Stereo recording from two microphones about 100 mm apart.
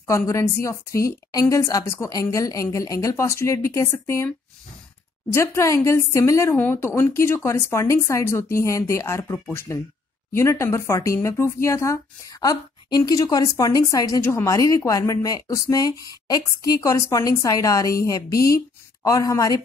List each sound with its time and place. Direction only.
0.0 s a woman's voice: 30° left (ahead or behind)
5.3 s speech: 30° left (ahead or behind)
12.4 s a woman's voice: 40° left (ahead or behind)